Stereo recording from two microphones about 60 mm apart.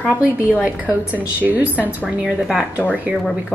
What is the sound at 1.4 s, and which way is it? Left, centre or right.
Speech, right.